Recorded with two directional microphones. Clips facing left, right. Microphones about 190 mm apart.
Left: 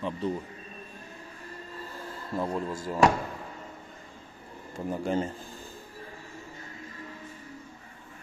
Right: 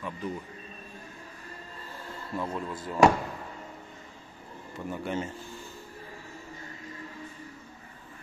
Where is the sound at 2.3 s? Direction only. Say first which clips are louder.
Left 3 dB; 35° left (ahead or behind).